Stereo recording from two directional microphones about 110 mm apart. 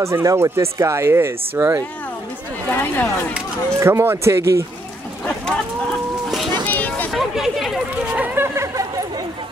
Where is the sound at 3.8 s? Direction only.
20° right (ahead or behind).